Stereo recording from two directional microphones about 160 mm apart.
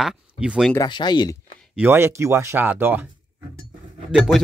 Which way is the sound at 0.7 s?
25° left (ahead or behind).